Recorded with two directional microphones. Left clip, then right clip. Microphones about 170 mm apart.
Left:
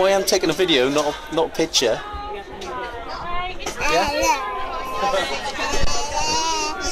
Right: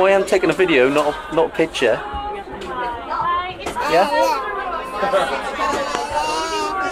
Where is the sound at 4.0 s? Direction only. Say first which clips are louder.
Right 4 dB; 30° left (ahead or behind).